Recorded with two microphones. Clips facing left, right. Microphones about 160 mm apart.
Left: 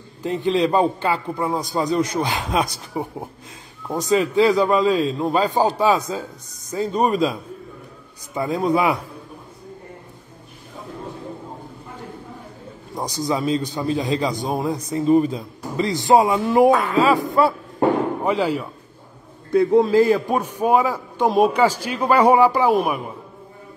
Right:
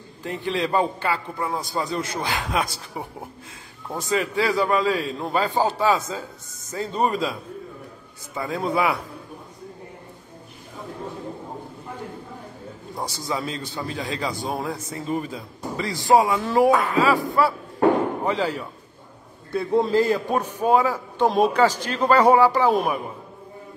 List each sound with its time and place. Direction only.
0.2 s a man's voice: 20° left (ahead or behind)
8.4 s a man's voice: 20° left (ahead or behind)
12.9 s a man's voice: 15° left (ahead or behind)